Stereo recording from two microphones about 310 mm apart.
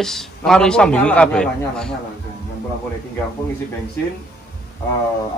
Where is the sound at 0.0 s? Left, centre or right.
Centre.